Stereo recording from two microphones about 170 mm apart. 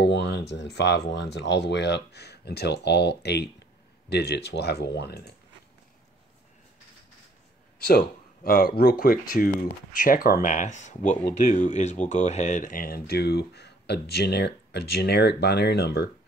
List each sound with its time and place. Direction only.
0.0 s speech: 90° left; by 5.3 s 75° left (ahead or behind)
8.5 s speech: 60° left (ahead or behind); by 16.1 s 75° left (ahead or behind)